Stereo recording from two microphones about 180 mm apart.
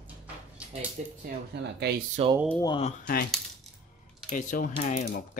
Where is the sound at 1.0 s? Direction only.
45° right (ahead or behind).